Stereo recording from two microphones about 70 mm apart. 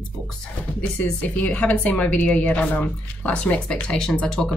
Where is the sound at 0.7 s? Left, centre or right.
Centre.